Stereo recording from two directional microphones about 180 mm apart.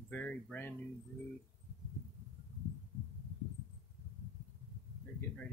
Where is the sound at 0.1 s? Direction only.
10° left (ahead or behind).